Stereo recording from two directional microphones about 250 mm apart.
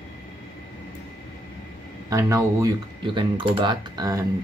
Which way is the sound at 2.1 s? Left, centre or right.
Centre.